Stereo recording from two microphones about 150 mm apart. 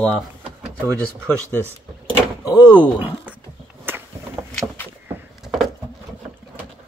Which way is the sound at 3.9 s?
15° right (ahead or behind).